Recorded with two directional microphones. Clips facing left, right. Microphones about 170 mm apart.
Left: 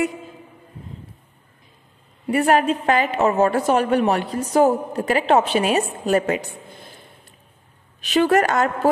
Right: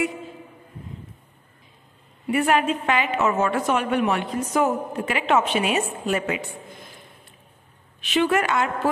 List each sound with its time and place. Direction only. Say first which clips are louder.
2.2 s a woman's voice: left 3 dB; 40° left (ahead or behind)
8.0 s a woman's voice: left 4 dB; 40° left (ahead or behind)